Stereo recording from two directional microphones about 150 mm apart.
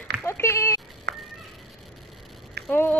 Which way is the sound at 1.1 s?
90° right.